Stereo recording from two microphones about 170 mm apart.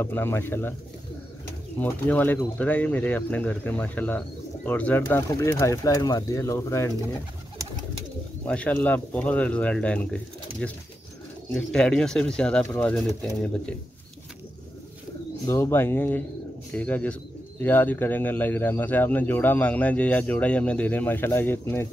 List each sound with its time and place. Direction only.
0.0 s speech: 15° left (ahead or behind)
1.8 s speech: 10° left (ahead or behind)
8.5 s speech: 10° left (ahead or behind)
11.5 s speech: 5° left (ahead or behind)
15.4 s speech: 15° left (ahead or behind)